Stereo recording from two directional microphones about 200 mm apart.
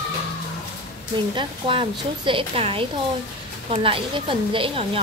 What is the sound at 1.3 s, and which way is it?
A woman's voice, 25° right (ahead or behind).